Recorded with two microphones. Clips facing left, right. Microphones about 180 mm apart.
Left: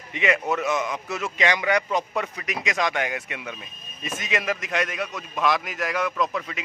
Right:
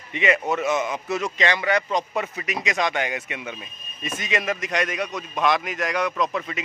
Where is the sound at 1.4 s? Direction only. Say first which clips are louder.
Left 2 dB; 10° left (ahead or behind).